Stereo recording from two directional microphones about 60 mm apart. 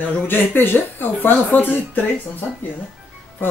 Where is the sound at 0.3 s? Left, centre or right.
Left.